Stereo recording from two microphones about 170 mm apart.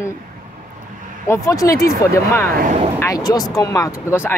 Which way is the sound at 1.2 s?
15° left (ahead or behind).